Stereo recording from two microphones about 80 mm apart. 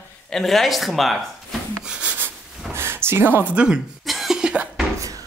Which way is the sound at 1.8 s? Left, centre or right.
Centre.